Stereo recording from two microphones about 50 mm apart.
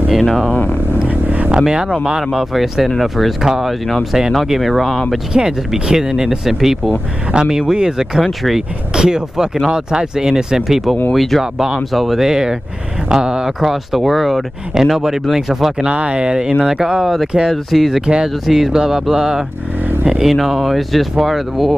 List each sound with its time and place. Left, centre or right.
0.1 s speech: centre
1.0 s vehicle: right
1.6 s speech: centre
5.3 s speech: centre
8.2 s speech: centre
8.9 s speech: centre
11.1 s speech: centre
15.9 s speech: right; by 18.0 s centre
18.0 s speech: centre